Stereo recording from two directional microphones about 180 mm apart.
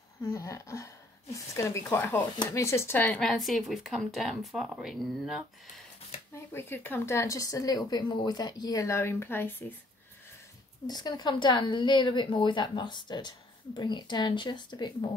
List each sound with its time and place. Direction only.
0.2 s a woman's voice: 20° left (ahead or behind); by 5.4 s centre (ahead or behind)
6.3 s a woman's voice: 10° left (ahead or behind)
10.9 s a woman's voice: 25° left (ahead or behind)